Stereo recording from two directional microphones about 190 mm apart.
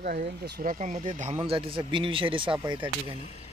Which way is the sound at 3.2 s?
35° left (ahead or behind).